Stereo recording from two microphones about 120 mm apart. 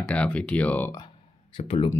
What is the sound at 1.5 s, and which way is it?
Speech, 50° left (ahead or behind).